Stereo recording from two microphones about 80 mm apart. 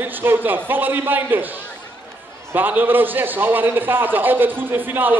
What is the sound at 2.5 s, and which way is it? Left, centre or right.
A man's voice, right.